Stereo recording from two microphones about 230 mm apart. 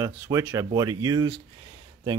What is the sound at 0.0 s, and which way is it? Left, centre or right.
Speech, centre.